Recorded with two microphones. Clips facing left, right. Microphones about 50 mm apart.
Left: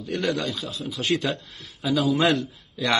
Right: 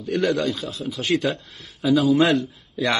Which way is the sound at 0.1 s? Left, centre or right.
Right.